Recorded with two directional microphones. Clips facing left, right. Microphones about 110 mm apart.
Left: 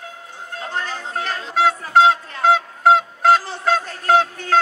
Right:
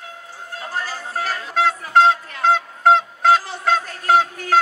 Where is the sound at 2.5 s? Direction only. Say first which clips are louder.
Left 1 dB; 5° left (ahead or behind).